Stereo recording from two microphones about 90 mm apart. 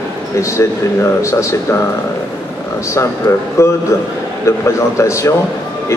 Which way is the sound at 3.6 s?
35° left (ahead or behind).